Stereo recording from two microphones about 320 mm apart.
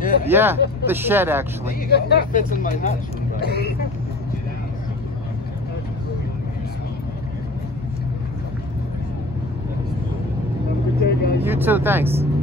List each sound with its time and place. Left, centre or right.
0.3 s speech: centre
1.9 s speech: left
11.1 s vehicle: left
11.4 s speech: centre